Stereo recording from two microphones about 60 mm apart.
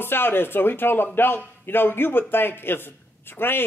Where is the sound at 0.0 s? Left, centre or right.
Left.